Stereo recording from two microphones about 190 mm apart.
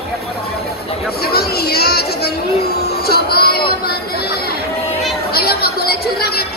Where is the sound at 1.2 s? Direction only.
55° left (ahead or behind).